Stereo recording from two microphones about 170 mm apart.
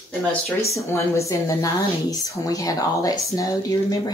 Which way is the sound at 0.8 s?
15° left (ahead or behind).